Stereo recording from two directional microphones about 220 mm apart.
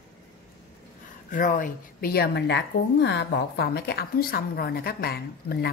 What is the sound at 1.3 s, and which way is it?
A woman's voice, 35° left (ahead or behind).